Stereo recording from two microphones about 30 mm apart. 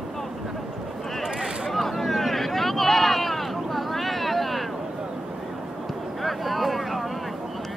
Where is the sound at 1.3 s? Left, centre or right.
Centre.